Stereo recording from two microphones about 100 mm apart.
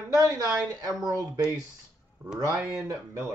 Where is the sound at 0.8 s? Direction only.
40° right (ahead or behind).